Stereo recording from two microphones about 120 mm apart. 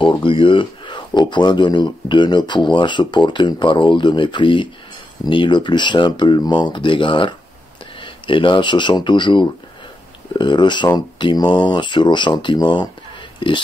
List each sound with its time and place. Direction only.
0.0 s speech: 45° left (ahead or behind)